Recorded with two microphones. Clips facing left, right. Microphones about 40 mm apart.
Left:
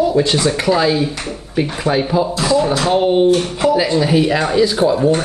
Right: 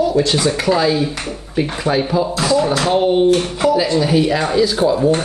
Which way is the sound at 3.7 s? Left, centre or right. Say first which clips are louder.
Left 1 dB; centre.